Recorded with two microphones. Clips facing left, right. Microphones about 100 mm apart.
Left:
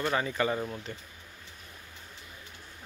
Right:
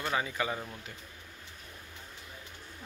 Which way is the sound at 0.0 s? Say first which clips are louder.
Left 4 dB; 5° right (ahead or behind).